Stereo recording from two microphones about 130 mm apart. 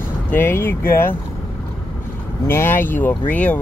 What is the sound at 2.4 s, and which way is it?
Speech, 20° left (ahead or behind).